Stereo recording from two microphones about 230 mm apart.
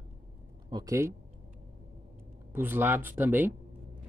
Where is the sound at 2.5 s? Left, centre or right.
Centre.